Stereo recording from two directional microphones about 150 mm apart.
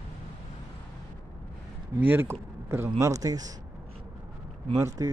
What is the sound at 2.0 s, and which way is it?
Speech, 15° right (ahead or behind).